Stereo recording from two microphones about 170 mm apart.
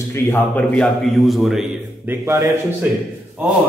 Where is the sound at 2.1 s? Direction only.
15° right (ahead or behind).